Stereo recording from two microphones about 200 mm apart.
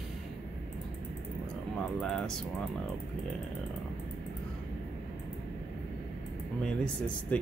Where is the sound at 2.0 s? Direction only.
Centre (ahead or behind).